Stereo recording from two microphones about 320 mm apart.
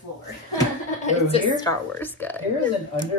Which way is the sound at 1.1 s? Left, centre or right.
Centre.